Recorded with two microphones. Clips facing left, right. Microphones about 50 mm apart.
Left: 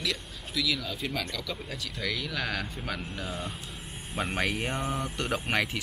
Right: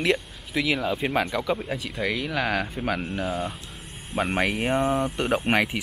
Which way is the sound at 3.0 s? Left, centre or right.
Right.